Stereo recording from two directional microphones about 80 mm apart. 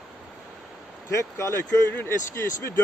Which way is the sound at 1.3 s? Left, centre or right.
Left.